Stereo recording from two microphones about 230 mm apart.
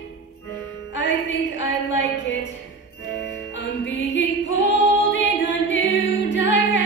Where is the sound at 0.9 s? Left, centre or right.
Left.